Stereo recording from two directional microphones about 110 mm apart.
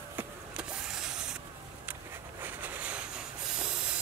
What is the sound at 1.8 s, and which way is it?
Rub, 15° right (ahead or behind).